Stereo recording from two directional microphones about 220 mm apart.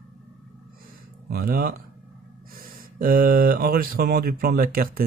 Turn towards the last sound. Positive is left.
turn(degrees=-40)  # may be behind; listen again after turning